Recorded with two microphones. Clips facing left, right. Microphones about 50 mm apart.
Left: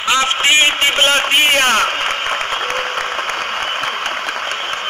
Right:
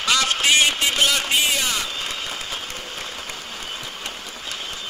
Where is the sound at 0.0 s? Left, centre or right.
Left.